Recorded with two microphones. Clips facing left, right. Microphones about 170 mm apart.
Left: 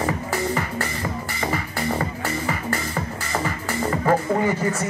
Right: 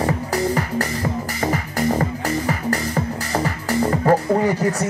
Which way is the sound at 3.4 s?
40° right (ahead or behind).